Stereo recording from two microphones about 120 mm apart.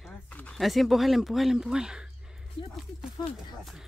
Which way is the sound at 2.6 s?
45° left (ahead or behind).